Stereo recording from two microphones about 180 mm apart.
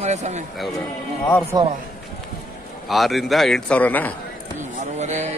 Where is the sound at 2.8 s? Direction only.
Centre (ahead or behind).